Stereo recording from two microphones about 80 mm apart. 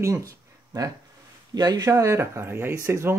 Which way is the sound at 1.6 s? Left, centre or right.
Right.